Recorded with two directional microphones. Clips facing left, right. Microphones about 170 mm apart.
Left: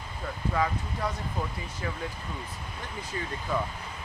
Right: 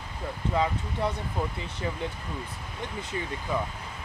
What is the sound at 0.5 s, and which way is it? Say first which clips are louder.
Speech: right 2 dB; 25° right (ahead or behind).